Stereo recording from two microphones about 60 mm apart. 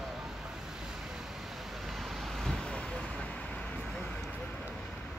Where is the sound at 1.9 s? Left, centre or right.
Centre; by 3.8 s left.